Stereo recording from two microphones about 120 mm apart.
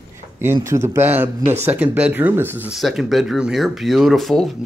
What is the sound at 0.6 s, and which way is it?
Speech, 20° right (ahead or behind).